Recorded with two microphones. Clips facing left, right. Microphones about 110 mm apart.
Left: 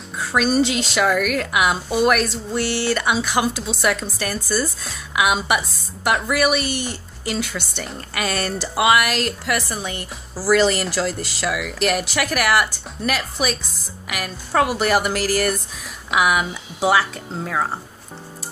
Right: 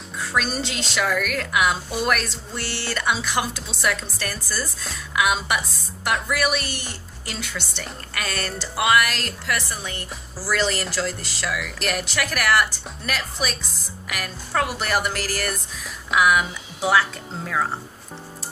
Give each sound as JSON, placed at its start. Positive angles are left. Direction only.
{"t": 0.4, "sound": "a woman's voice", "side_deg": 10}